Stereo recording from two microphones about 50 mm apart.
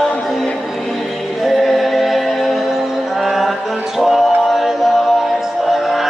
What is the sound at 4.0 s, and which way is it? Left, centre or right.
Music, centre.